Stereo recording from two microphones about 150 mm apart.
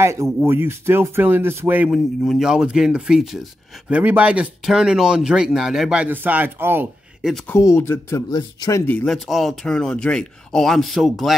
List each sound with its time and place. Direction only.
0.0 s speech: 20° right (ahead or behind)
1.9 s speech: centre (ahead or behind)
7.2 s speech: centre (ahead or behind)
7.4 s speech: 20° left (ahead or behind)
8.3 s speech: 25° left (ahead or behind)
8.8 s speech: 5° left (ahead or behind)